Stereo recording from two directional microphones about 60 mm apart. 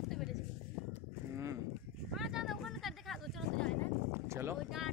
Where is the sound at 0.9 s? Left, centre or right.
Right.